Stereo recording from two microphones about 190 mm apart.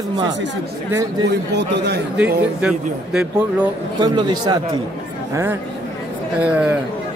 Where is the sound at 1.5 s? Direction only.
65° right (ahead or behind).